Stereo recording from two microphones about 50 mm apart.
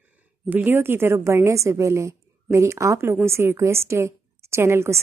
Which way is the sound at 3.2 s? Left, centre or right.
Right.